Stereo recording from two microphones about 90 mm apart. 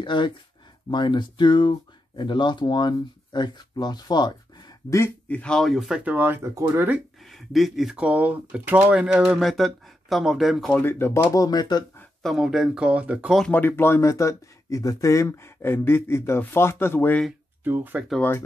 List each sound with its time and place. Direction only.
0.0 s speech: 60° left (ahead or behind)
4.8 s speech: 30° left (ahead or behind)
5.3 s speech: 10° left (ahead or behind); by 6.0 s 5° right (ahead or behind)
6.0 s speech: 25° right (ahead or behind)
7.2 s speech: centre (ahead or behind)
10.7 s speech: 25° left (ahead or behind)
11.3 s speech: 45° left (ahead or behind)
12.2 s speech: 5° right (ahead or behind)
13.5 s speech: 25° left (ahead or behind)
17.6 s speech: 20° right (ahead or behind)